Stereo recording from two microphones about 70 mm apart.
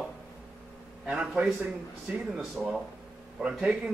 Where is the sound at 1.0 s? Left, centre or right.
Centre.